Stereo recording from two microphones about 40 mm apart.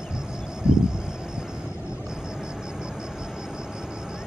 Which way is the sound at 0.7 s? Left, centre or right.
Centre.